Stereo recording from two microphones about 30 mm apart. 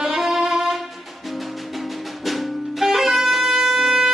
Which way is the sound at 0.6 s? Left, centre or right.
Centre.